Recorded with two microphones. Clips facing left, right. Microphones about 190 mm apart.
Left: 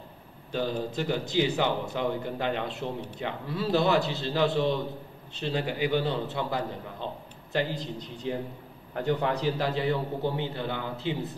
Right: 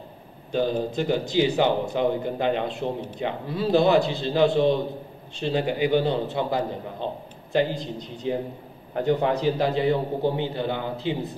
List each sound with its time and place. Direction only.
0.5 s a man's voice: 20° right (ahead or behind)
8.9 s a man's voice: 20° right (ahead or behind)